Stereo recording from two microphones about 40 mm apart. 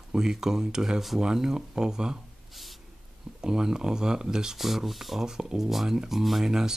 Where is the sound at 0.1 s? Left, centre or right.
Centre.